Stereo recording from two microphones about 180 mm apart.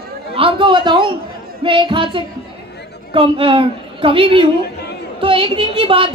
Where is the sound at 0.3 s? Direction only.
30° right (ahead or behind).